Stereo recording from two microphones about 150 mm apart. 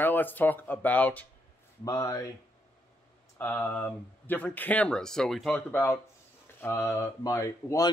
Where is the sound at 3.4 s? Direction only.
10° left (ahead or behind).